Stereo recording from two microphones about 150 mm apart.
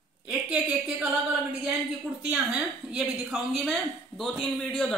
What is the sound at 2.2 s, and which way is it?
A woman's voice, 5° right (ahead or behind).